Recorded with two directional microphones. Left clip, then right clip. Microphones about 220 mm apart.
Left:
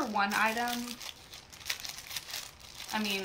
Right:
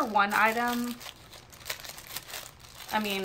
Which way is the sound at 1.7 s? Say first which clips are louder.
Left 1 dB; 25° right (ahead or behind).